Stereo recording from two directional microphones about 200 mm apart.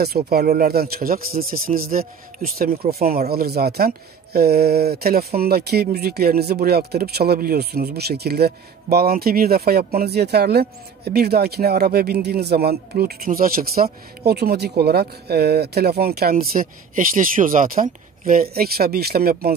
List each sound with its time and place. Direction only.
0.0 s speech: 50° right (ahead or behind)